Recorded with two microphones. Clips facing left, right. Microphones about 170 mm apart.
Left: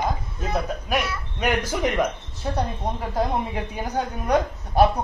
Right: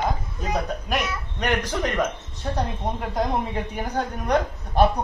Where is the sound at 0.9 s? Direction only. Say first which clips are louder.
Left 3 dB; 5° left (ahead or behind).